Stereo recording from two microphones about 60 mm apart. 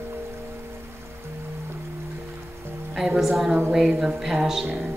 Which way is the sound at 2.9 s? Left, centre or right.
Centre.